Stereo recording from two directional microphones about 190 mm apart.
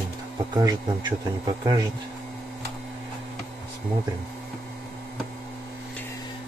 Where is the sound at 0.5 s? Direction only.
20° right (ahead or behind).